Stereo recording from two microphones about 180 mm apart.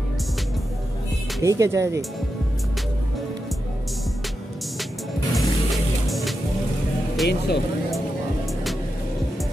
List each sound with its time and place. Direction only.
1.4 s speech: 15° right (ahead or behind)
5.3 s music: centre (ahead or behind)
7.2 s speech: 65° left (ahead or behind)